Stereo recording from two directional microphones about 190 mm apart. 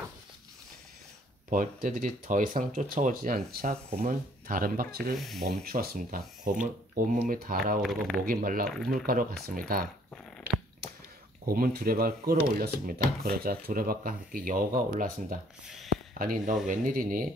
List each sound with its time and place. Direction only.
1.5 s speech: 45° right (ahead or behind)
3.7 s speech: 30° right (ahead or behind)
4.5 s speech: 50° right (ahead or behind)
5.1 s speech: centre (ahead or behind)
5.6 s speech: 50° right (ahead or behind)
7.8 s speech: centre (ahead or behind)
8.3 s speech: 50° right (ahead or behind)
8.6 s speech: centre (ahead or behind)
8.9 s speech: 50° right (ahead or behind)
11.4 s speech: 50° right (ahead or behind)
15.6 s speech: centre (ahead or behind)
15.9 s a sound: 45° right (ahead or behind)
16.6 s speech: 45° right (ahead or behind)